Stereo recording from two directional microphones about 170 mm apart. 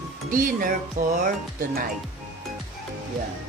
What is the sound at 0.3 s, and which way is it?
Speech, 50° right (ahead or behind).